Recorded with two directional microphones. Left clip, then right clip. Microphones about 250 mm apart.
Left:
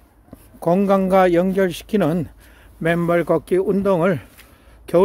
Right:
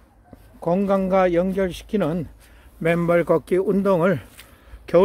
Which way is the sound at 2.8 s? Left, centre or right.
Centre.